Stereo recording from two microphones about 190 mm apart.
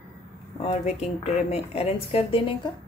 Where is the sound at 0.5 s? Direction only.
35° left (ahead or behind).